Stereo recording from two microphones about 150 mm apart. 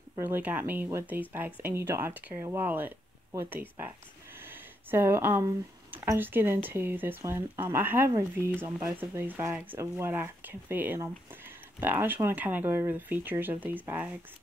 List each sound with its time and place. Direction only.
0.2 s speech: 10° right (ahead or behind)